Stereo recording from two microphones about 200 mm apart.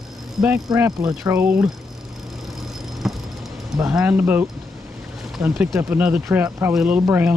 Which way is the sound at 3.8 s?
5° right (ahead or behind).